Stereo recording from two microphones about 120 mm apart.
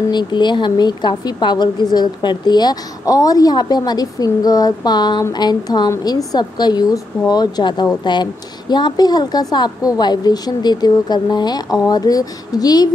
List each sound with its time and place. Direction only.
0.1 s a woman's voice: 40° left (ahead or behind)